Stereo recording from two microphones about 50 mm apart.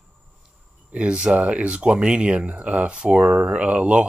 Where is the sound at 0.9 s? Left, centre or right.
Right.